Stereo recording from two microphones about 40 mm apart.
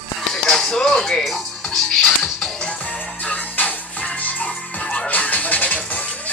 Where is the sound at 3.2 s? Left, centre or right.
Left.